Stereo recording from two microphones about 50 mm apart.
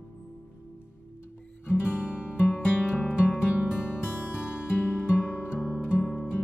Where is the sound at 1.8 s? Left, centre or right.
Right.